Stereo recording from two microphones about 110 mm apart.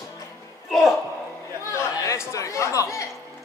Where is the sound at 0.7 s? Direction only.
Centre (ahead or behind).